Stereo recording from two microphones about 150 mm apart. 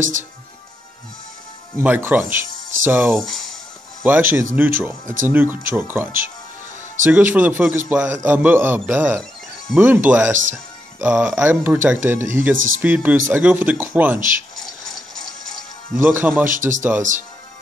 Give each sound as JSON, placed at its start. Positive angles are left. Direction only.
{"t": 1.8, "sound": "speech", "side_deg": -15}
{"t": 3.2, "sound": "speech", "side_deg": 5}
{"t": 4.0, "sound": "speech", "side_deg": -15}
{"t": 14.6, "sound": "music", "side_deg": 5}
{"t": 16.0, "sound": "speech", "side_deg": -15}
{"t": 16.4, "sound": "speech", "side_deg": -60}